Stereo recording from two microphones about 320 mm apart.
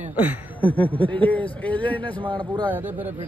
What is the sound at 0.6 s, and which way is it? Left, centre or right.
A man's voice, centre.